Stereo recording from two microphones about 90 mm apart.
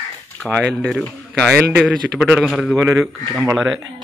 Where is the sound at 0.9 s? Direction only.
5° left (ahead or behind).